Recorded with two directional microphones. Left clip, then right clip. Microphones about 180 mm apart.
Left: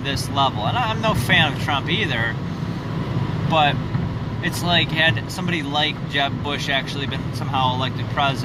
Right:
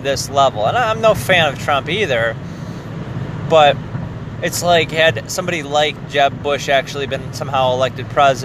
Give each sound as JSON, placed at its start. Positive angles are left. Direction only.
{"t": 0.0, "sound": "speech", "side_deg": -25}
{"t": 3.4, "sound": "speech", "side_deg": -30}